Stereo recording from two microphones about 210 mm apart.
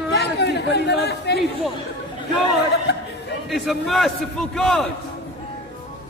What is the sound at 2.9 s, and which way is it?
Chatter, 50° left (ahead or behind).